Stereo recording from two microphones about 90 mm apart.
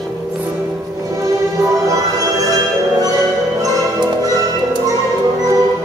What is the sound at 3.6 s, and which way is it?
Music, 45° right (ahead or behind).